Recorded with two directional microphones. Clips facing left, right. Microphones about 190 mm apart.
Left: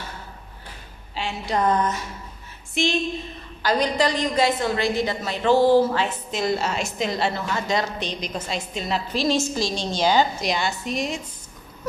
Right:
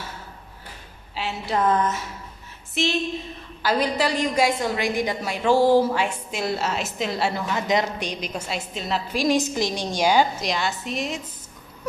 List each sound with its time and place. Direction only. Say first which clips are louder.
1.1 s a woman's voice: even; 5° right (ahead or behind)
9.1 s a woman's voice: right 2 dB; 15° right (ahead or behind)
10.4 s a woman's voice: left 1 dB; centre (ahead or behind)